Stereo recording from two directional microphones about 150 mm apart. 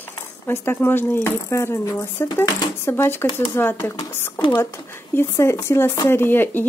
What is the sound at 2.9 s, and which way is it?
Speech, 15° left (ahead or behind).